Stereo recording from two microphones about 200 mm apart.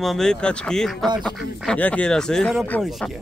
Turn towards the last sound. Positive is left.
turn(degrees=5)  # may be behind; listen again after turning